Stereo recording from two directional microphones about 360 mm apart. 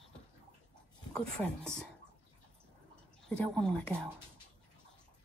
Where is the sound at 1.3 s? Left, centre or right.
Centre.